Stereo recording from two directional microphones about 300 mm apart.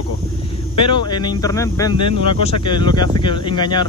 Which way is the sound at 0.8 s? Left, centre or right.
Centre.